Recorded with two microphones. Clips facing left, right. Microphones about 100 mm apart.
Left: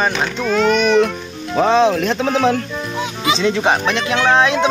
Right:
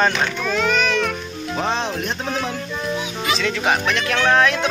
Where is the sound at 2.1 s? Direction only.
85° left.